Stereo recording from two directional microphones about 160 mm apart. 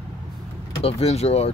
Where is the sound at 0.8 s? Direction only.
40° left (ahead or behind).